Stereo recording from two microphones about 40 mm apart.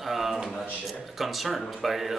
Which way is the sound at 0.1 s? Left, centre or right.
Centre.